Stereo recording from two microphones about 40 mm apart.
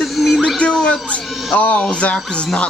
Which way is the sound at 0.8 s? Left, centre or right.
Left.